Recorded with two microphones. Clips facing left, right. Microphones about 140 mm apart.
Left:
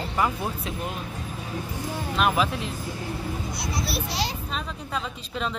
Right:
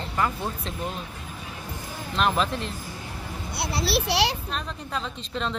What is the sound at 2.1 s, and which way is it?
Speech, 5° left (ahead or behind).